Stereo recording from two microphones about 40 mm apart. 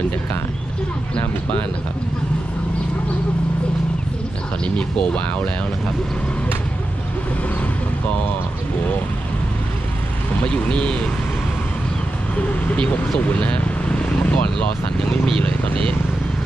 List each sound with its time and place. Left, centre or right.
4.7 s speech: left
10.4 s speech: left
13.4 s vehicle: left